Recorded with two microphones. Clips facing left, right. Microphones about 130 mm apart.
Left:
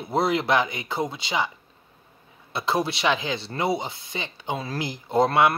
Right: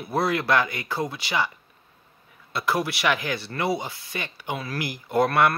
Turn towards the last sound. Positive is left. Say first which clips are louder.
# left 1 dB
turn(degrees=20)  # may be behind; listen again after turning